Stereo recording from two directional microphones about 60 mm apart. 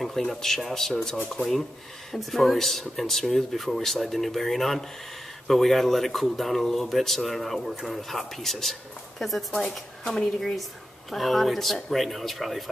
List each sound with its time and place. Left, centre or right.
0.0 s speech: centre
2.1 s speech: centre
9.5 s a woman's voice: centre
10.0 s speech: centre